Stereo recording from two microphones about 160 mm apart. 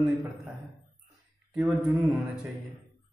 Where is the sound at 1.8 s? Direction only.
5° right (ahead or behind).